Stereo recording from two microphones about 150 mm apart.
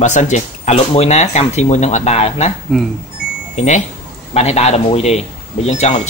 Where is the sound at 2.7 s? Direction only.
Centre (ahead or behind).